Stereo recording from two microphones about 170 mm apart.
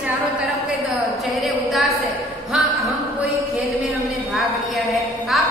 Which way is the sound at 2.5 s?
Centre (ahead or behind).